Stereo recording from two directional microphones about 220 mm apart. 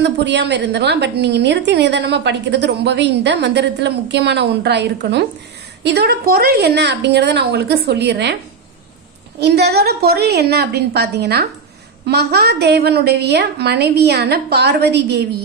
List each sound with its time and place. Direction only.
0.0 s a woman's voice: 50° right (ahead or behind)
9.4 s a woman's voice: 50° right (ahead or behind)